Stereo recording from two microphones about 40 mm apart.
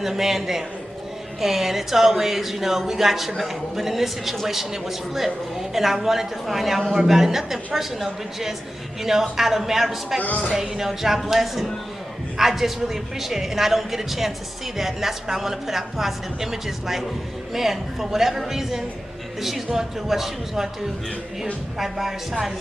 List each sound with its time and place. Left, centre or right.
0.0 s speech: centre
10.2 s speech: left
10.5 s speech: centre
21.7 s speech: centre